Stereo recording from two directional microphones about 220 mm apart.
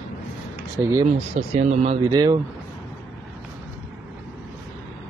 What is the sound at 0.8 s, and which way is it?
Speech, 15° right (ahead or behind).